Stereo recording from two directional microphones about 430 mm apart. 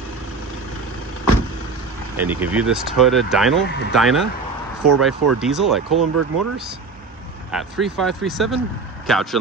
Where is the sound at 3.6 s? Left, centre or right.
Left.